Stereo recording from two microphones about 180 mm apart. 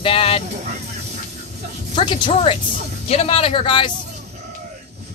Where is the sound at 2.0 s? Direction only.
25° left (ahead or behind).